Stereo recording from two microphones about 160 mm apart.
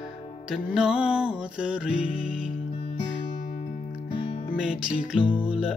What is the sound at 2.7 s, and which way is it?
Music, 30° left (ahead or behind).